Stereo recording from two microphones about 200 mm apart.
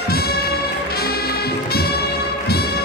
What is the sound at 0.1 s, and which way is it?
Music, 50° left (ahead or behind).